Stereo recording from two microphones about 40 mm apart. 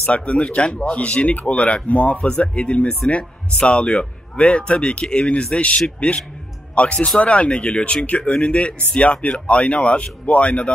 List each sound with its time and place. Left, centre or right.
0.0 s speech: left